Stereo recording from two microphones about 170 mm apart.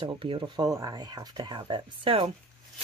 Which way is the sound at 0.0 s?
30° right (ahead or behind).